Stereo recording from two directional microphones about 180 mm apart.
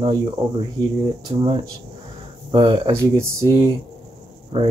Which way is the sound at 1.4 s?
30° right (ahead or behind).